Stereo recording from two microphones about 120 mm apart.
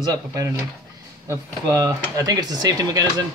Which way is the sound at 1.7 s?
30° right (ahead or behind).